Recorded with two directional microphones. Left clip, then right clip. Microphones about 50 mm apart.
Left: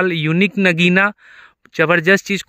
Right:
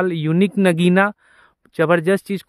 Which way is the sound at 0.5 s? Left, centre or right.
Right.